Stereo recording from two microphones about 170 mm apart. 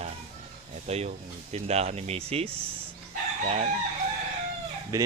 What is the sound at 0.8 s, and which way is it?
Speech, 40° right (ahead or behind).